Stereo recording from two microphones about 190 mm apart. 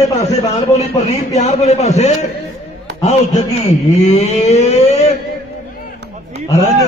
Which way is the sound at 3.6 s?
35° left (ahead or behind).